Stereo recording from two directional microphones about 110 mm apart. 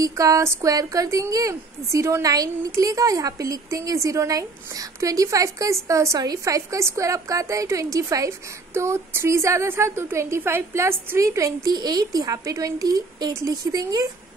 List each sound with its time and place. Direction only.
0.0 s speech: 30° right (ahead or behind)